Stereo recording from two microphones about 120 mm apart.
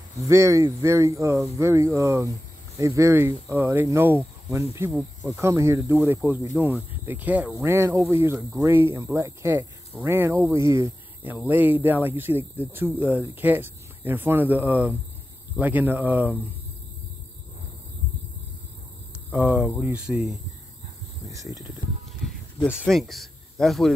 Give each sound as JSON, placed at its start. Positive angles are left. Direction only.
{"t": 0.3, "sound": "speech", "side_deg": -25}
{"t": 6.5, "sound": "speech", "side_deg": -5}
{"t": 7.1, "sound": "speech", "side_deg": -15}
{"t": 7.6, "sound": "speech", "side_deg": -25}
{"t": 19.3, "sound": "speech", "side_deg": -10}
{"t": 21.3, "sound": "speech", "side_deg": -25}
{"t": 22.8, "sound": "speech", "side_deg": 0}